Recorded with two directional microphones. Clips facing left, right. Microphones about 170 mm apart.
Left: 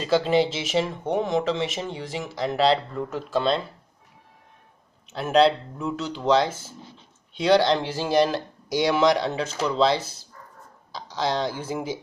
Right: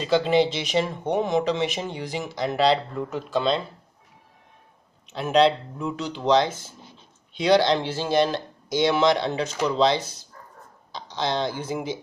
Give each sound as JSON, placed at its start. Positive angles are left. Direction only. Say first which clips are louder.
{"t": 0.0, "sound": "speech", "louder": "right 1 dB", "side_deg": 0}
{"t": 5.1, "sound": "speech", "louder": "even", "side_deg": 0}